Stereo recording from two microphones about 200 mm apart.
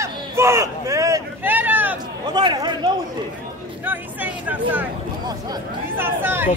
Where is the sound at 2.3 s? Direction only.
20° right (ahead or behind).